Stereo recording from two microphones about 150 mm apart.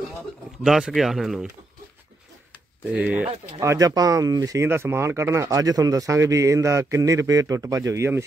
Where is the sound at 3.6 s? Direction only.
20° right (ahead or behind).